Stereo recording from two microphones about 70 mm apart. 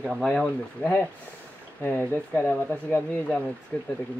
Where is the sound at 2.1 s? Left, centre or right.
Left.